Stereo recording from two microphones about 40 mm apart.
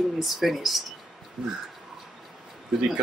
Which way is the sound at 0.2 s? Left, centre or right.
Centre.